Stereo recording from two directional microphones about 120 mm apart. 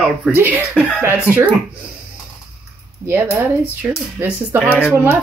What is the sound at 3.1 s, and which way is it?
Speech, 15° right (ahead or behind).